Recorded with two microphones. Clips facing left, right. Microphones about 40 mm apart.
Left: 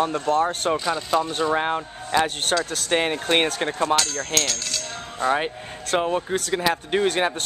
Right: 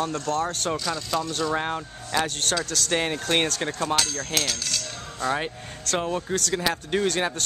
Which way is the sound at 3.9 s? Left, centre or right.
Centre.